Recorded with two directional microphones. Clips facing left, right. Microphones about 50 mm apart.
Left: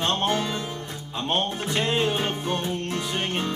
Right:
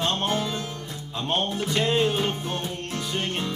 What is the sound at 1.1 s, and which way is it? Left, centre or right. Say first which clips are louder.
Speech: even; left.